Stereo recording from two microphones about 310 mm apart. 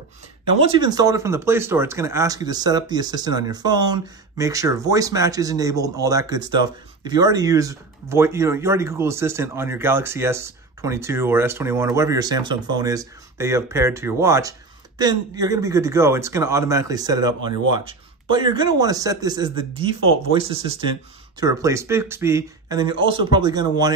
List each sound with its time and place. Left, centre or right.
0.7 s speech: centre